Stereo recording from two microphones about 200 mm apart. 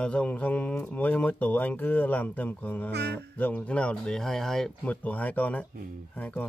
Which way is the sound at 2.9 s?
55° right (ahead or behind).